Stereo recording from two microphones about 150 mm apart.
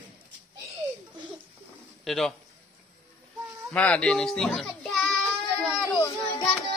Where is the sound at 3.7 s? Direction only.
5° left (ahead or behind).